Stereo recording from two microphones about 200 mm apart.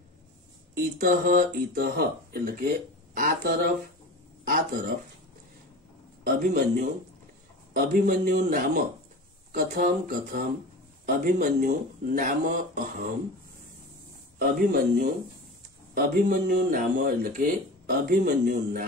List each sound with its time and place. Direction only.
0.7 s speech: 45° right (ahead or behind)
6.2 s speech: 45° right (ahead or behind)
14.4 s speech: 45° right (ahead or behind)